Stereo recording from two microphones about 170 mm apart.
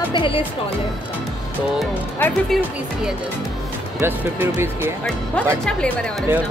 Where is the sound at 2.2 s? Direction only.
10° left (ahead or behind).